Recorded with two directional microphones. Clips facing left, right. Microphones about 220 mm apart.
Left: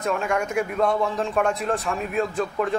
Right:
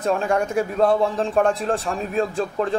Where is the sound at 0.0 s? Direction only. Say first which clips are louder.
Right 3 dB; 30° right (ahead or behind).